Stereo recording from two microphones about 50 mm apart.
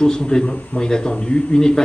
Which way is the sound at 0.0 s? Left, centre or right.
Centre.